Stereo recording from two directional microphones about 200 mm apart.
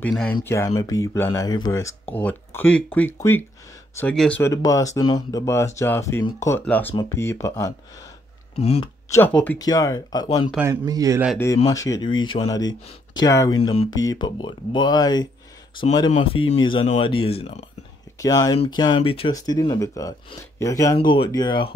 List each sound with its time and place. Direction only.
0.0 s speech: 5° left (ahead or behind)
8.5 s speech: 30° left (ahead or behind)
9.1 s speech: 10° left (ahead or behind)
9.6 s speech: 20° left (ahead or behind)
10.6 s speech: 15° right (ahead or behind)
11.3 s speech: 15° left (ahead or behind)
18.2 s speech: 20° left (ahead or behind)